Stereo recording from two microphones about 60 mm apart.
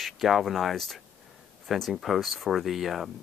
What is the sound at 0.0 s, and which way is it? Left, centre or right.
Speech, centre.